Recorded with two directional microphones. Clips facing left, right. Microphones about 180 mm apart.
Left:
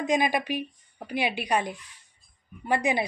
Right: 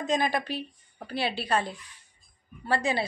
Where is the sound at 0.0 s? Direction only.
15° left (ahead or behind).